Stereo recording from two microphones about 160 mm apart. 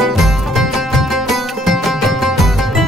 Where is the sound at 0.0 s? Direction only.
Centre (ahead or behind).